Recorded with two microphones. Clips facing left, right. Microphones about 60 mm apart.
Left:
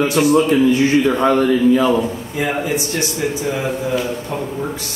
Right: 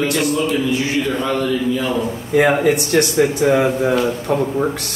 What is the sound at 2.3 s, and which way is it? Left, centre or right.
A man's voice, right.